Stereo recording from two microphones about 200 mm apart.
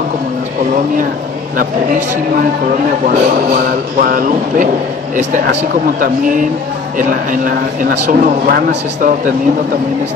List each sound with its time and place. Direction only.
3.1 s speech: 50° right (ahead or behind)